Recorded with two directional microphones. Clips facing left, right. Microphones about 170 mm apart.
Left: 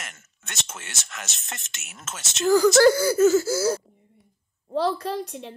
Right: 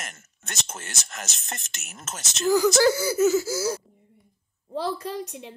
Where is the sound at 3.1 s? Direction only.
5° right (ahead or behind).